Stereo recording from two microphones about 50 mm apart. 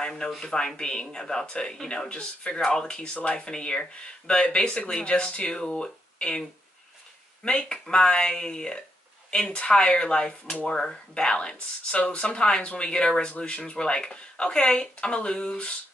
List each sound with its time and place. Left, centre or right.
0.0 s speech: centre
7.4 s speech: centre